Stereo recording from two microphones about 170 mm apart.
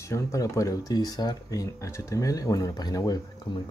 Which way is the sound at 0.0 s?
15° left (ahead or behind).